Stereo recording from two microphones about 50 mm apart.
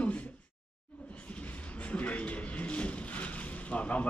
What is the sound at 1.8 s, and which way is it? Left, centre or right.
Vehicle, left.